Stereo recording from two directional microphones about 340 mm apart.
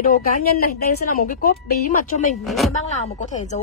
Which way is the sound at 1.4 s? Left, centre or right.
Left.